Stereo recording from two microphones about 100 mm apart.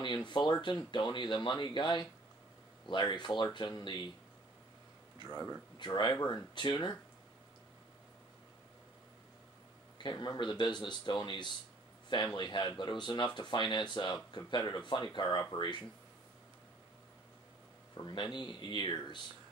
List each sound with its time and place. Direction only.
0.0 s speech: 50° left (ahead or behind)
5.3 s speech: 15° right (ahead or behind)
5.8 s speech: 50° left (ahead or behind)
10.0 s speech: 45° left (ahead or behind)
17.9 s speech: 50° left (ahead or behind)